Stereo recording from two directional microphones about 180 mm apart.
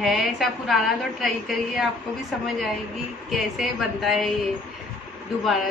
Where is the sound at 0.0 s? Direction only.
Centre (ahead or behind).